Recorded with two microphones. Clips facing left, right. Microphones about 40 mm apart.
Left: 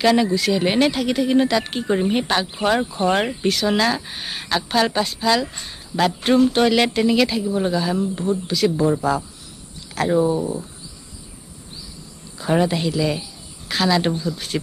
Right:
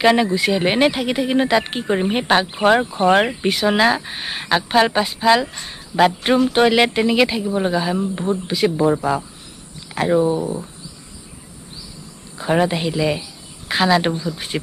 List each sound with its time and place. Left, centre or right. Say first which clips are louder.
0.0 s speech: right 2 dB; right
12.4 s speech: right 1 dB; centre